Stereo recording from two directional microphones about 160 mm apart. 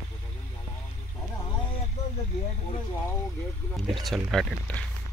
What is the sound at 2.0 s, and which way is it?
Vehicle, 20° left (ahead or behind).